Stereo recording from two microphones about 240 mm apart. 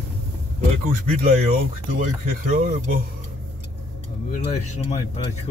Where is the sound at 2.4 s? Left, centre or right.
Right.